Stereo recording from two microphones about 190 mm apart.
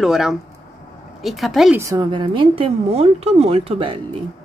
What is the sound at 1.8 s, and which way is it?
A woman's voice, 20° right (ahead or behind).